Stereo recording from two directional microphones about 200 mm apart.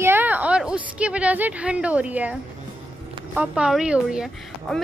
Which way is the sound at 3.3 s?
5° right (ahead or behind).